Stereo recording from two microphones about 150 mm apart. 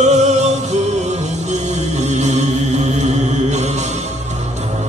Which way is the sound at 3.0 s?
50° right (ahead or behind).